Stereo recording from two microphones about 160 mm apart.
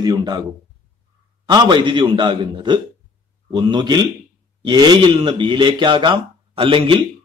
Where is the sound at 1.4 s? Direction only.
25° right (ahead or behind).